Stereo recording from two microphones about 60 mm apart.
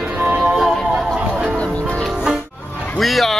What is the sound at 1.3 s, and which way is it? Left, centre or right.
Music, right.